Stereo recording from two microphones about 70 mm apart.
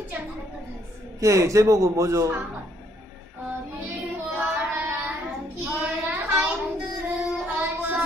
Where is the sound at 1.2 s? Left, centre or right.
Right.